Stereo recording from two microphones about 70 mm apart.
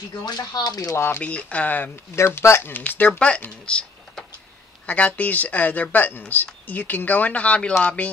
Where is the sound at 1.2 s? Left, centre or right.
Centre.